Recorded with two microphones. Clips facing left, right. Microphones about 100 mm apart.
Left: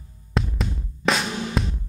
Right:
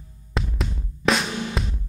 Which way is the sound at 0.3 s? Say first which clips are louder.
Left 2 dB; centre (ahead or behind).